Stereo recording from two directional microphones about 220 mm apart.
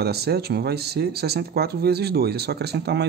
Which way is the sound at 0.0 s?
45° right (ahead or behind).